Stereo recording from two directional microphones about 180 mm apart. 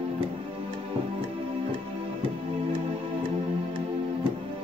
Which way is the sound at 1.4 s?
30° right (ahead or behind).